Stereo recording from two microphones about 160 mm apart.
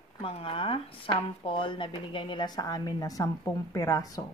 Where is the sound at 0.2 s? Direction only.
35° left (ahead or behind).